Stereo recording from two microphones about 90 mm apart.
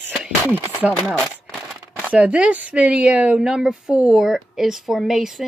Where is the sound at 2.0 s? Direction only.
15° right (ahead or behind).